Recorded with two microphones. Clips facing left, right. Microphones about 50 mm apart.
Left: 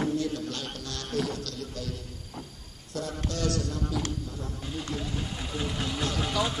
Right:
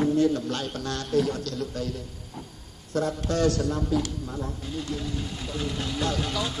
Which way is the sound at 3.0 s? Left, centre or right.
Right.